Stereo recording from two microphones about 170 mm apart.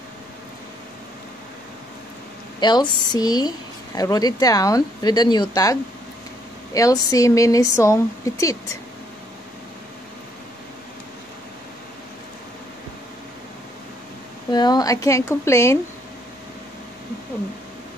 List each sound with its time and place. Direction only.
2.6 s a woman's voice: 25° left (ahead or behind)
14.5 s a woman's voice: 25° left (ahead or behind)